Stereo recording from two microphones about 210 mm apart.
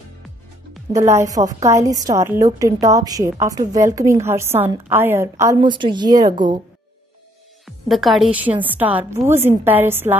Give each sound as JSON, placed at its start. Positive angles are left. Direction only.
{"t": 0.9, "sound": "a woman's voice", "side_deg": -15}
{"t": 7.6, "sound": "a woman's voice", "side_deg": 0}